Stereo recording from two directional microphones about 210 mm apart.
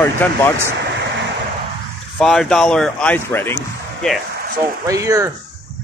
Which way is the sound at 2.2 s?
5° left (ahead or behind).